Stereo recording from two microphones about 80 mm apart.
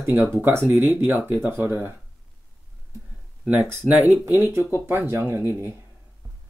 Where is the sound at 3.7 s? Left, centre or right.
Right.